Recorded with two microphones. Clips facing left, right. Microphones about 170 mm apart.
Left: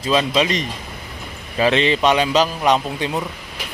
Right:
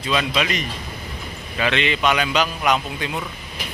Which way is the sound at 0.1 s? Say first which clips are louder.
Left 4 dB; 30° left (ahead or behind).